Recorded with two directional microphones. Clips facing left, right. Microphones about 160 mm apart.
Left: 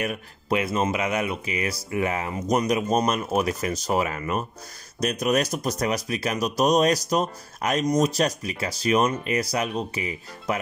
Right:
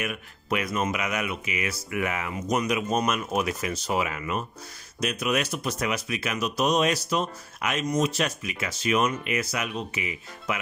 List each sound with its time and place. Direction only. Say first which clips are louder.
0.0 s speech: left 4 dB; 30° left (ahead or behind)